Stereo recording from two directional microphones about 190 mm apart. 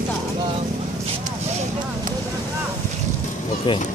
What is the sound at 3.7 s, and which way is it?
Speech, 25° left (ahead or behind).